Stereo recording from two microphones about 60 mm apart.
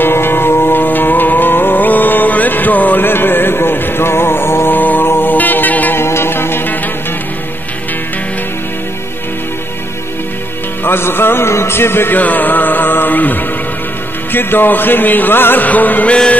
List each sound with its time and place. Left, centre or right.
0.0 s music: left
5.9 s music: left
10.8 s music: left
12.2 s music: left